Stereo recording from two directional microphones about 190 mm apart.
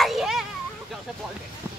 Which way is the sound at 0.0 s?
Centre (ahead or behind).